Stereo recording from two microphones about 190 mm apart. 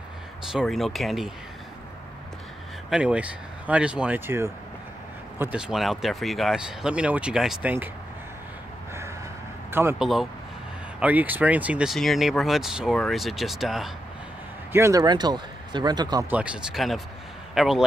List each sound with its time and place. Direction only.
0.5 s speech: centre (ahead or behind)
2.9 s speech: 5° right (ahead or behind)
9.7 s speech: 10° right (ahead or behind)
14.7 s speech: 15° right (ahead or behind)
16.3 s speech: 5° right (ahead or behind)